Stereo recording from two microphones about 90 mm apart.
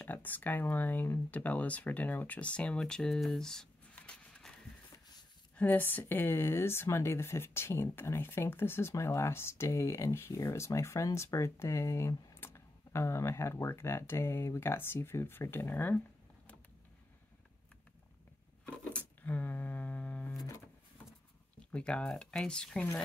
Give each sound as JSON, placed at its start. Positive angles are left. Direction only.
{"t": 0.0, "sound": "speech", "side_deg": 20}
{"t": 3.9, "sound": "a sound", "side_deg": 15}
{"t": 5.6, "sound": "speech", "side_deg": 20}
{"t": 18.9, "sound": "humming", "side_deg": 15}
{"t": 20.3, "sound": "a sound", "side_deg": 35}
{"t": 21.7, "sound": "speech", "side_deg": 10}